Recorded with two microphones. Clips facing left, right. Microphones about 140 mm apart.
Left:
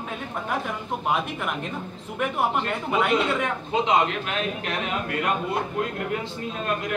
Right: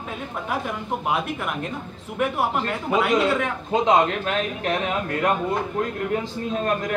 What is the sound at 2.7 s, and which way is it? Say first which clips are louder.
Speech: right 2 dB; centre (ahead or behind).